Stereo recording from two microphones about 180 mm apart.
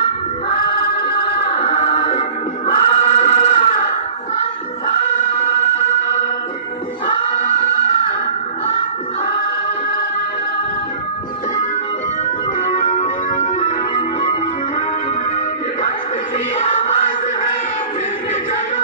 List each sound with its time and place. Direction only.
1.5 s music: 35° left (ahead or behind)
2.7 s choir: 40° left (ahead or behind)
12.7 s music: 40° left (ahead or behind)